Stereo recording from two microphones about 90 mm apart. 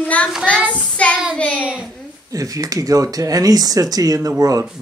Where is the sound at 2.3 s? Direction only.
40° right (ahead or behind).